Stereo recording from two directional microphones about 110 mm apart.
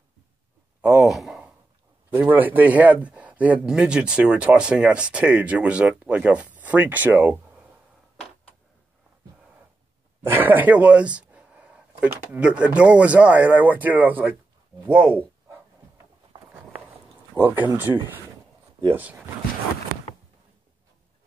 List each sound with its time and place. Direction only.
0.7 s sigh: 5° right (ahead or behind)
2.0 s speech: 20° right (ahead or behind)
10.2 s speech: 20° right (ahead or behind)
14.9 s a sound: 20° right (ahead or behind)
17.4 s speech: 20° right (ahead or behind)